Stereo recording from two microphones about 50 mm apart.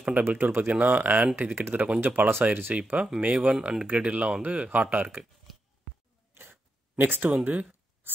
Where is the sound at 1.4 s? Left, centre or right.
Right.